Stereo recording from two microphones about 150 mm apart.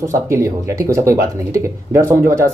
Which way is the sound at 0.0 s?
20° right (ahead or behind).